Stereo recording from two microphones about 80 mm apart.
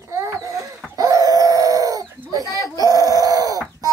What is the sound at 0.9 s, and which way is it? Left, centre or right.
Chicken, right.